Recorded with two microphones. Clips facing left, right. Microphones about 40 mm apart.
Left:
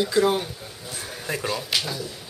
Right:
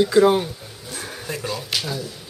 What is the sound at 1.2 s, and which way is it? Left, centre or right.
Speech, centre.